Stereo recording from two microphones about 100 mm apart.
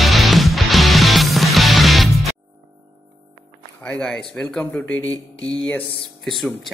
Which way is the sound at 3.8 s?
10° left (ahead or behind).